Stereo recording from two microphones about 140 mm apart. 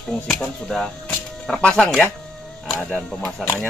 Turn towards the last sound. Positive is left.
turn(degrees=15)  # may be behind; listen again after turning